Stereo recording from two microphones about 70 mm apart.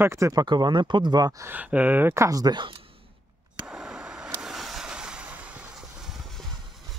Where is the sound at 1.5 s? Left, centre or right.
Right.